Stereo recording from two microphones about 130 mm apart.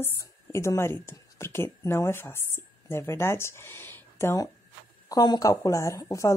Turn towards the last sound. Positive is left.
turn(degrees=25)  # may be behind; listen again after turning